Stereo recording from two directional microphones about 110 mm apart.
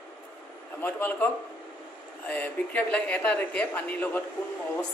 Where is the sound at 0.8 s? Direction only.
15° left (ahead or behind).